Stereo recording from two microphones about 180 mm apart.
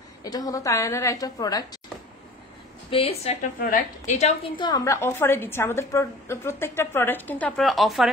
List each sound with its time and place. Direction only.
0.2 s a woman's voice: 20° left (ahead or behind)
2.9 s a woman's voice: 35° left (ahead or behind)
3.5 s a woman's voice: 50° left (ahead or behind)
4.6 s a woman's voice: 20° left (ahead or behind); by 8.1 s centre (ahead or behind)